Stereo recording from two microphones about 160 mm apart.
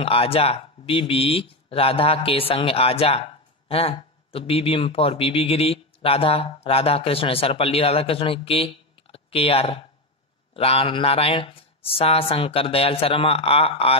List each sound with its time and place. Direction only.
0.0 s speech: 35° left (ahead or behind)